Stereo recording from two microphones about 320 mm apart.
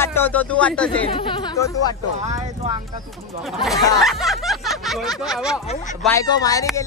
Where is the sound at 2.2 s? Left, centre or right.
Right.